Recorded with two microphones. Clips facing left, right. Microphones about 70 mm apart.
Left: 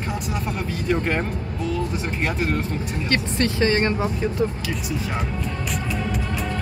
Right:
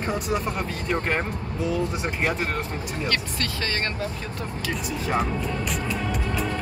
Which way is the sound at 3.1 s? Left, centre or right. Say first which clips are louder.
Left 6 dB; left.